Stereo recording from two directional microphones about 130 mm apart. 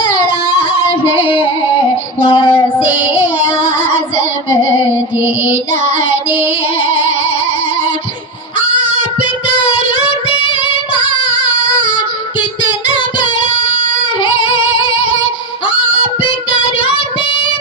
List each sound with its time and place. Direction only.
2.2 s child singing: 40° left (ahead or behind)